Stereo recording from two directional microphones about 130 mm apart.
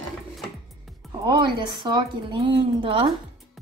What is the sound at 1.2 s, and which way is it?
A woman's voice, 35° right (ahead or behind).